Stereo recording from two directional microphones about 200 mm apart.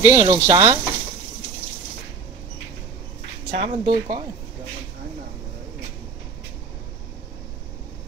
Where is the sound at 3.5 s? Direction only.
30° right (ahead or behind).